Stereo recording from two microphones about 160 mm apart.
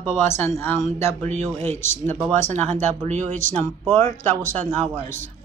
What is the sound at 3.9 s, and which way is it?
Speech, 15° left (ahead or behind).